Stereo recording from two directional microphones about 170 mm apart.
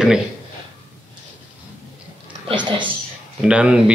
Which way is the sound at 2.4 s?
30° right (ahead or behind).